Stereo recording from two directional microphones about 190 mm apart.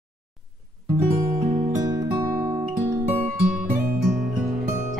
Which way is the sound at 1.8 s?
20° right (ahead or behind).